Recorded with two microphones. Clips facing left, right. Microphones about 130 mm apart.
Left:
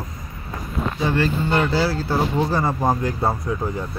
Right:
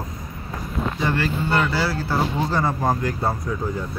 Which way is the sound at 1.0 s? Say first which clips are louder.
Left 3 dB; 25° left (ahead or behind).